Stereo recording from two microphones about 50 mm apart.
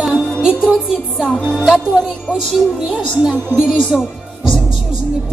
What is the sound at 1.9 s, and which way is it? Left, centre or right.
Speech, centre.